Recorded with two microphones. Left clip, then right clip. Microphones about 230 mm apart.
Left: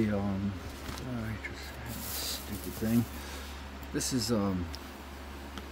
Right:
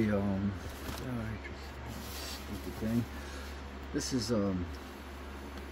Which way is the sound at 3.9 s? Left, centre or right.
Left.